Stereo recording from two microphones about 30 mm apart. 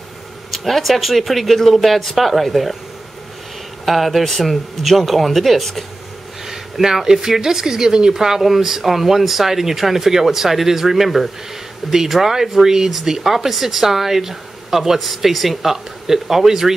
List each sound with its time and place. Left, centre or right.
0.5 s speech: centre
3.8 s speech: centre
6.4 s a sound: centre
7.1 s speech: centre